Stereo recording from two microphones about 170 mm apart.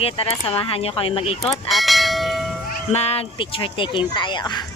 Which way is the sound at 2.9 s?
40° left (ahead or behind).